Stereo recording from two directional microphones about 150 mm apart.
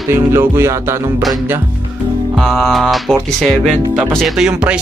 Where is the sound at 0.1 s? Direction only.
15° right (ahead or behind).